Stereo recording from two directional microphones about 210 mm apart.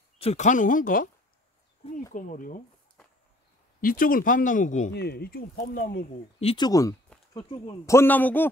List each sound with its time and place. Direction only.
0.2 s speech: 30° left (ahead or behind)
2.1 s speech: 40° left (ahead or behind)
3.0 s a sound: 5° left (ahead or behind)
3.8 s speech: 40° left (ahead or behind)
4.9 s speech: 50° left (ahead or behind)
6.4 s speech: 20° left (ahead or behind)